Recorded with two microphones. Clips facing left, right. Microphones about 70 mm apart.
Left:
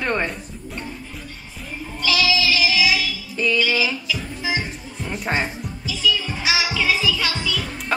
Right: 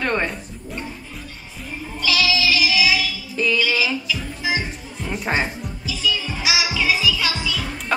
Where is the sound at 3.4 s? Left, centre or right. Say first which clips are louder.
Right 1 dB; centre.